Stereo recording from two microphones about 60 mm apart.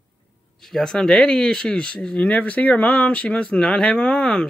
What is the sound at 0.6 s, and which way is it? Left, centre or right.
Speech, centre.